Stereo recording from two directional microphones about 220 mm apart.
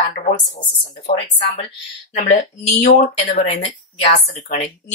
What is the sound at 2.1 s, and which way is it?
Speech, 30° left (ahead or behind).